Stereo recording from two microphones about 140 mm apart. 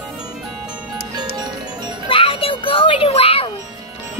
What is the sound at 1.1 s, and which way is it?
Music, 30° right (ahead or behind).